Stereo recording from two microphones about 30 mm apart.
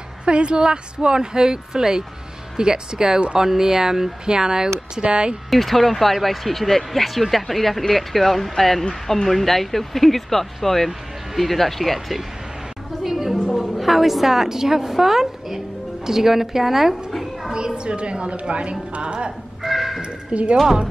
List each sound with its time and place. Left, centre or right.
0.2 s a woman's voice: right
5.0 s a woman's voice: right
5.5 s speech: centre
13.0 s a sound: centre
13.3 s a woman's voice: centre
17.1 s a sound: centre
17.5 s a woman's voice: right
19.6 s a sound: centre
20.3 s speech: right